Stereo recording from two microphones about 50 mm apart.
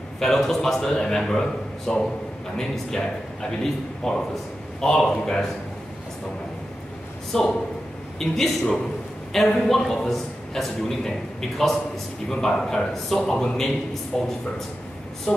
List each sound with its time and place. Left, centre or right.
0.2 s a man's voice: centre
7.3 s a man's voice: centre
15.3 s a sound: centre